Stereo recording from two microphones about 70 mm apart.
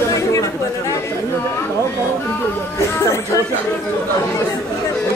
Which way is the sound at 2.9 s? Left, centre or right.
Left.